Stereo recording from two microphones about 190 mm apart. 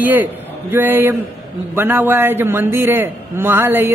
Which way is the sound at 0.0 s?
10° right (ahead or behind).